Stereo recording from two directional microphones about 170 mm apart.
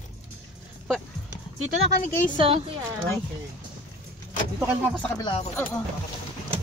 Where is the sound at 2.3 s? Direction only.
35° right (ahead or behind).